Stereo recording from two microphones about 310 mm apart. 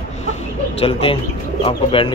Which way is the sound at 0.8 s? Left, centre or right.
Centre.